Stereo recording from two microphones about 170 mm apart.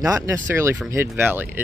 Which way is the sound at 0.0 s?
20° right (ahead or behind).